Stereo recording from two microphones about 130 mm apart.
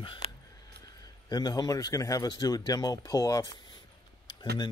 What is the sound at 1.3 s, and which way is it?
Speech, 30° left (ahead or behind).